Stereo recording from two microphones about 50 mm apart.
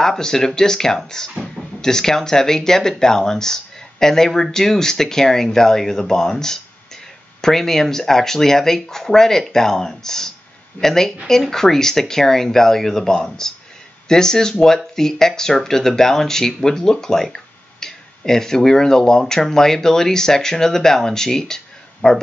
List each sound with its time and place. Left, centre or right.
0.0 s speech: centre